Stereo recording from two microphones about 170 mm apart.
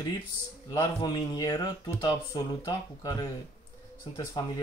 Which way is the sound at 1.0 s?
20° left (ahead or behind).